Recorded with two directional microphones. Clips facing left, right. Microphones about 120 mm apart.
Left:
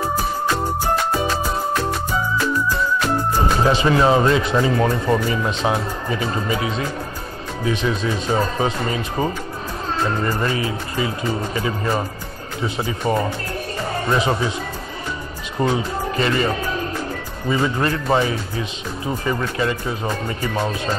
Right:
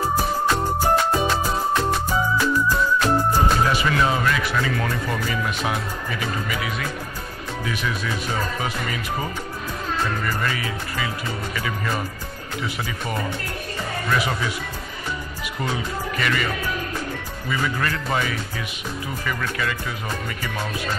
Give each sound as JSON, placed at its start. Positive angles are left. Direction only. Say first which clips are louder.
{"t": 3.6, "sound": "speech", "louder": "left 5 dB", "side_deg": 30}
{"t": 15.6, "sound": "speech", "louder": "left 7 dB", "side_deg": 30}